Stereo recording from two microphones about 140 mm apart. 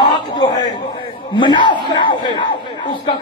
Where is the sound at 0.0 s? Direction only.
30° left (ahead or behind).